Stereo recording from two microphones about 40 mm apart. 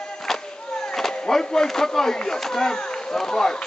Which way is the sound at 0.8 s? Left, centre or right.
Centre.